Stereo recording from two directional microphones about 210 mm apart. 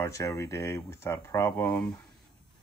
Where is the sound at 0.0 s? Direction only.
15° left (ahead or behind).